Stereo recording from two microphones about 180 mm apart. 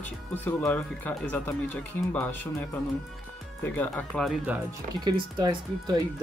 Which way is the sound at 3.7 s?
10° left (ahead or behind).